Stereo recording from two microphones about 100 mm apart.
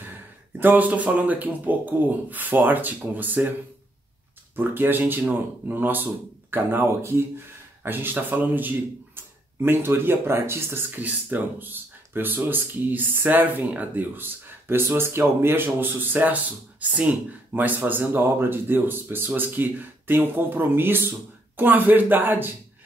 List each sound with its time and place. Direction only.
0.6 s speech: 15° right (ahead or behind)
4.6 s speech: 20° right (ahead or behind)